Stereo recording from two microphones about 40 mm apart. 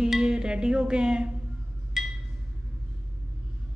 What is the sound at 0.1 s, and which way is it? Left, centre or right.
Music, centre.